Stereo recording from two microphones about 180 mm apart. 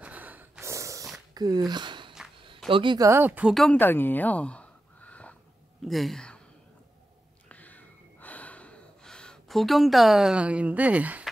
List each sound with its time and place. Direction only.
0.0 s snort: 10° right (ahead or behind)
1.3 s a sound: 20° right (ahead or behind)
2.7 s speech: 25° right (ahead or behind)
3.1 s a woman's voice: 10° right (ahead or behind)
7.4 s gasp: 10° left (ahead or behind); by 11.2 s 10° right (ahead or behind)